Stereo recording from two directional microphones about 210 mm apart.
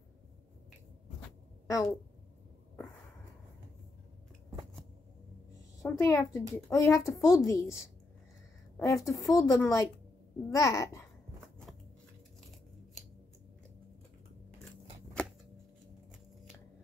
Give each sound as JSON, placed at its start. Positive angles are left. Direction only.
{"t": 1.7, "sound": "a woman's voice", "side_deg": 15}
{"t": 5.8, "sound": "a child's voice", "side_deg": 15}
{"t": 15.2, "sound": "shuffling cards", "side_deg": 5}